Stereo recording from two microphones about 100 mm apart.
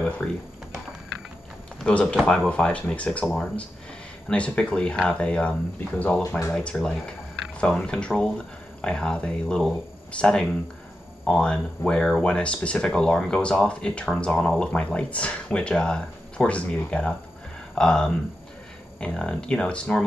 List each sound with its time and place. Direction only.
0.2 s speech: 5° left (ahead or behind)
1.8 s speech: 10° left (ahead or behind)